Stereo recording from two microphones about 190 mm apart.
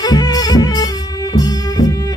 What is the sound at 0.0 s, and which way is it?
Music, 20° left (ahead or behind).